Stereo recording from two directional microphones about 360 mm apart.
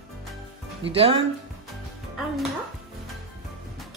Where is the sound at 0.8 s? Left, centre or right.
Centre.